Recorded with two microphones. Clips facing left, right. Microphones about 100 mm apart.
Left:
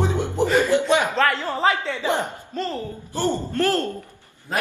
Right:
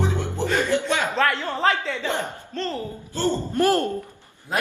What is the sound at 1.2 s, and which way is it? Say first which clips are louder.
Speech: left 1 dB; centre (ahead or behind).